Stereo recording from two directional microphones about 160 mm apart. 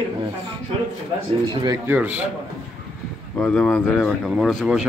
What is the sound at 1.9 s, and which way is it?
Speech, 10° right (ahead or behind).